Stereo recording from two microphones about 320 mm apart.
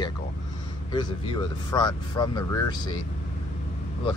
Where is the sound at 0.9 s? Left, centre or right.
Centre.